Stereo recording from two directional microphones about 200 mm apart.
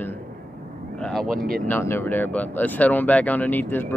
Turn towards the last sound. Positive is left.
turn(degrees=10)  # may be behind; listen again after turning